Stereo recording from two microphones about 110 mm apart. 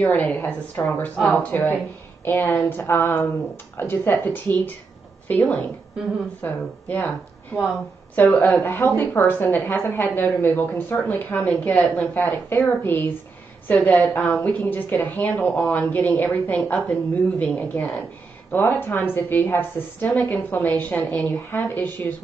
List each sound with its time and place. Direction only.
0.1 s a woman's voice: 15° left (ahead or behind)